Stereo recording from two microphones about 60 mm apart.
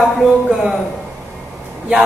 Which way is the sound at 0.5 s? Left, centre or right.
Centre.